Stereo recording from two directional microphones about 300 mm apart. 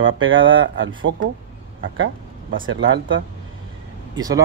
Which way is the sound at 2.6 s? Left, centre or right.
Right.